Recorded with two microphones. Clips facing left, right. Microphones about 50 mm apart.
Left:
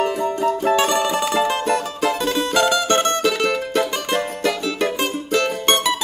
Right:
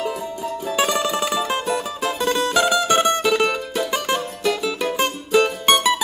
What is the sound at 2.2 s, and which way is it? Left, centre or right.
Mandolin, centre.